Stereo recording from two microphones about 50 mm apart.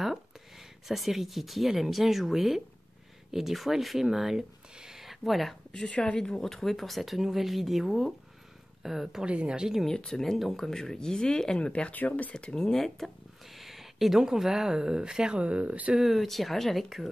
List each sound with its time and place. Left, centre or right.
0.8 s speech: centre
4.7 s a sound: centre
5.7 s speech: left
6.1 s speech: centre
9.2 s speech: right
9.8 s speech: centre
11.9 s speech: left; by 13.1 s centre
13.6 s speech: centre
15.4 s speech: right
16.0 s speech: centre